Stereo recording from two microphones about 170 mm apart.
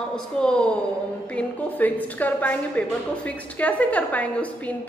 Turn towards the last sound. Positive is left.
turn(degrees=10)  # may be behind; listen again after turning